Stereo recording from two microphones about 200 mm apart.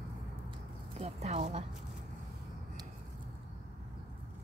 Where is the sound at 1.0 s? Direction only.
35° right (ahead or behind).